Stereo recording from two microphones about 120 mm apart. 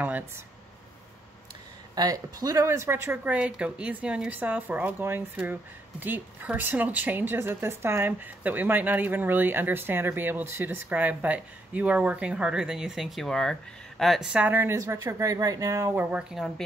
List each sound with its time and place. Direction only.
2.0 s speech: 30° right (ahead or behind)
16.1 s speech: 5° right (ahead or behind)